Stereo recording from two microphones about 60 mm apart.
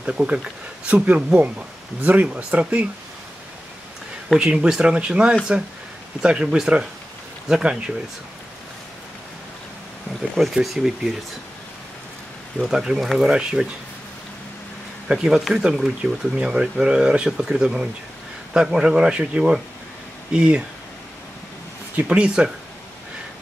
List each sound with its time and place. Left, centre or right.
0.0 s speech: centre
4.4 s speech: centre
10.3 s speech: centre
12.5 s speech: centre
15.0 s speech: centre
21.9 s speech: right